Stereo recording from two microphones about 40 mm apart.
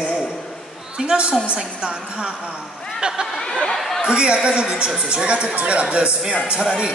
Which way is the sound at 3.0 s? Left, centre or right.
Centre.